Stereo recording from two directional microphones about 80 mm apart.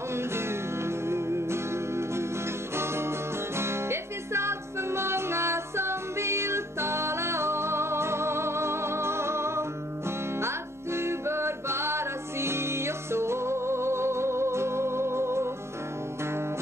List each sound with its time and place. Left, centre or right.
0.1 s music: right